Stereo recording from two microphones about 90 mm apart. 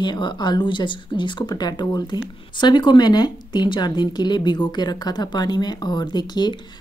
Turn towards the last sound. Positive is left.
turn(degrees=55)  # may be behind; listen again after turning